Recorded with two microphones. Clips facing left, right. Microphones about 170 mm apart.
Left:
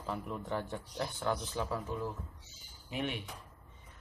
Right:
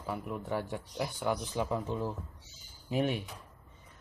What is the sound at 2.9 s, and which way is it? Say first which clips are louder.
Speech: right 6 dB; 40° right (ahead or behind).